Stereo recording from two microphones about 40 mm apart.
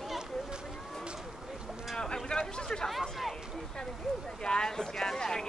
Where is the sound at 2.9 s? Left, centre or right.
Centre.